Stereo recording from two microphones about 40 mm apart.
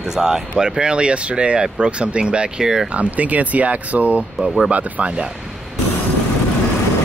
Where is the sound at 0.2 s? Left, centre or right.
Centre.